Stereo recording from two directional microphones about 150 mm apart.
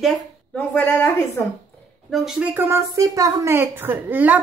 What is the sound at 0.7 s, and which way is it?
Speech, 15° left (ahead or behind).